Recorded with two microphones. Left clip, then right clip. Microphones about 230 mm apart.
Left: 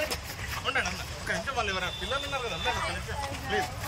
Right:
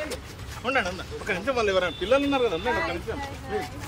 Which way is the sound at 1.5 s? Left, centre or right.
Right.